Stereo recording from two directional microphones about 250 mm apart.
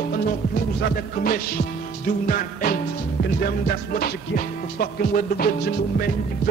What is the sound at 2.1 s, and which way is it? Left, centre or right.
Music, left.